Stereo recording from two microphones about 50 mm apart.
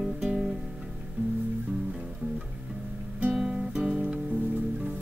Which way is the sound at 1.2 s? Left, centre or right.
Right.